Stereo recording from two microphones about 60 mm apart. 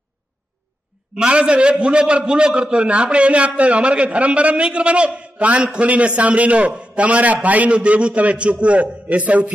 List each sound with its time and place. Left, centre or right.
1.1 s a man's voice: centre